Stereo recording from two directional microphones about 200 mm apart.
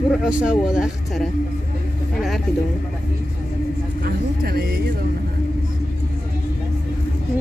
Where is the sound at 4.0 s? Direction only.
50° right (ahead or behind).